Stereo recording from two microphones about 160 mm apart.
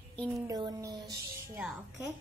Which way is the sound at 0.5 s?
25° right (ahead or behind).